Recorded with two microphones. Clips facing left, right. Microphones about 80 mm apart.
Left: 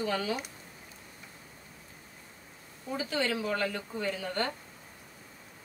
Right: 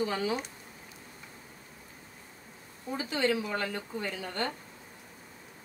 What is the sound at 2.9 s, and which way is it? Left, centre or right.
Speech, centre.